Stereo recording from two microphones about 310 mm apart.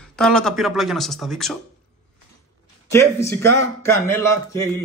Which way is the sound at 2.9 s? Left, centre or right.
Centre.